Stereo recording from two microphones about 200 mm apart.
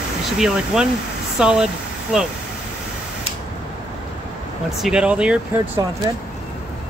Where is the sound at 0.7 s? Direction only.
5° right (ahead or behind).